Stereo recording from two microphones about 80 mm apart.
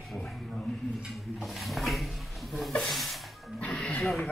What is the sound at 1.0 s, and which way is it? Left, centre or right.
Speech, centre.